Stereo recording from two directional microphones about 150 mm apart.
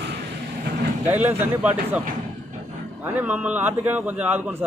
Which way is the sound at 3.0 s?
10° right (ahead or behind).